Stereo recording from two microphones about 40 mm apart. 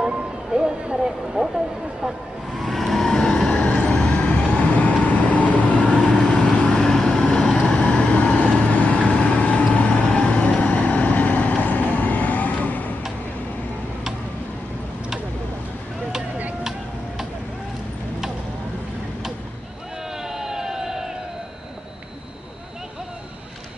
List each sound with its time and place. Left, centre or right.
0.0 s vehicle: centre
2.5 s vehicle: centre
3.1 s vehicle: centre
3.5 s vehicle: left
6.2 s vehicle: centre
6.5 s vehicle: left
6.8 s vehicle: centre; by 12.9 s left
20.2 s a sound: centre